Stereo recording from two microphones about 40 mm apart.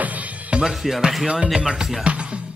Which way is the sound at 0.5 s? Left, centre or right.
Right.